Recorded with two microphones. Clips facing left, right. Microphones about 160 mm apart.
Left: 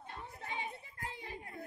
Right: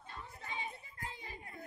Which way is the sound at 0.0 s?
60° left (ahead or behind).